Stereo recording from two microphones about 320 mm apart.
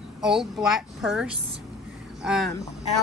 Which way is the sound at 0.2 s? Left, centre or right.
Centre.